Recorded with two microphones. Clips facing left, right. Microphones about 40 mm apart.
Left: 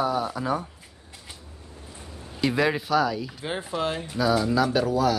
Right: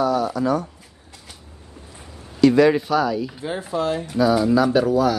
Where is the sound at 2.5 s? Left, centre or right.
Centre.